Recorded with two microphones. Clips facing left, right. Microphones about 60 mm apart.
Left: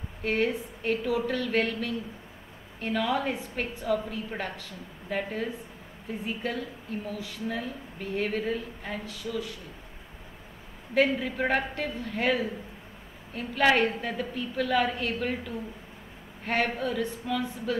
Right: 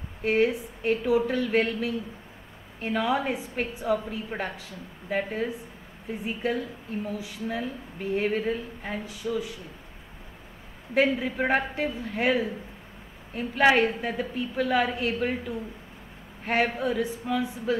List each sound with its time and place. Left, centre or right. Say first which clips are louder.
0.2 s speech: right 4 dB; centre
11.0 s speech: right 1 dB; centre